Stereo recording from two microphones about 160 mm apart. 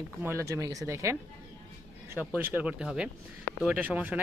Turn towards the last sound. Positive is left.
turn(degrees=-10)  # may be behind; listen again after turning